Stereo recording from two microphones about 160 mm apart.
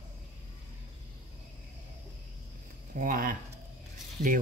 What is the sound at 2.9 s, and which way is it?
Speech, 60° right (ahead or behind).